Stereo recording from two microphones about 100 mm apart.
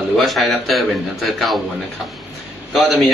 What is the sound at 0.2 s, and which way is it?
A man's voice, centre (ahead or behind).